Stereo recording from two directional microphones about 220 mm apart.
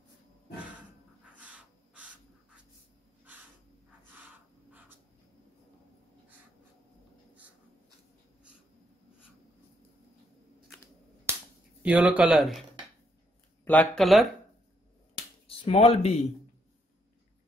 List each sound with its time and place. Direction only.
1.4 s owl: 5° right (ahead or behind)
11.8 s speech: 5° right (ahead or behind)
13.7 s speech: 5° left (ahead or behind)
15.4 s speech: 25° left (ahead or behind)